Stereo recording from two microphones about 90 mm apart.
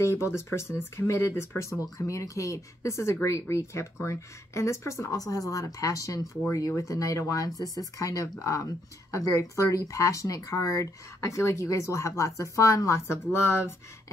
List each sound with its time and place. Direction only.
0.0 s speech: 30° left (ahead or behind)